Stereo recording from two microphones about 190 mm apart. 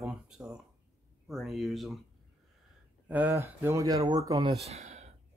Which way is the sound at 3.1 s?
10° right (ahead or behind).